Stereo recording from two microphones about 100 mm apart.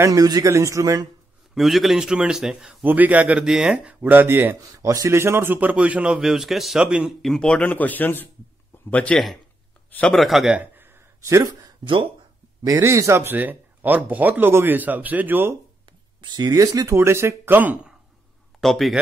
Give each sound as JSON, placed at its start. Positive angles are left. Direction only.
{"t": 0.0, "sound": "speech", "side_deg": -35}
{"t": 1.5, "sound": "a man's voice", "side_deg": 0}
{"t": 2.8, "sound": "a man's voice", "side_deg": -20}
{"t": 4.6, "sound": "a man's voice", "side_deg": -35}
{"t": 10.0, "sound": "a man's voice", "side_deg": 0}
{"t": 11.1, "sound": "speech", "side_deg": -30}
{"t": 11.8, "sound": "speech", "side_deg": -55}
{"t": 12.6, "sound": "speech", "side_deg": -35}
{"t": 16.2, "sound": "speech", "side_deg": -45}
{"t": 16.9, "sound": "speech", "side_deg": -25}
{"t": 18.6, "sound": "a man's voice", "side_deg": 0}